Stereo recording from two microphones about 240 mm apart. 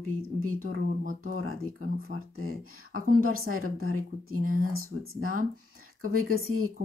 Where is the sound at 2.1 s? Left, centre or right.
Right.